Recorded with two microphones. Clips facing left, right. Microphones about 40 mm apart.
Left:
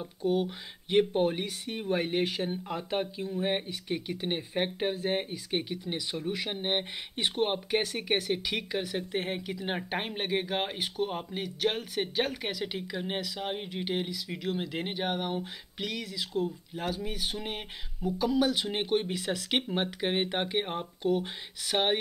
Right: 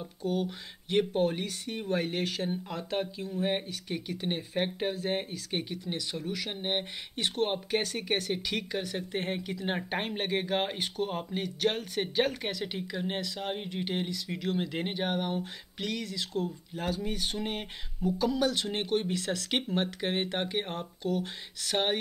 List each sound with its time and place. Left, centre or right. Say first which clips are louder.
0.0 s speech: left 3 dB; centre